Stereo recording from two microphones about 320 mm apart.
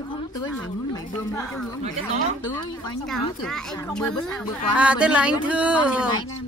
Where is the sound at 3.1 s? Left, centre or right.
Centre.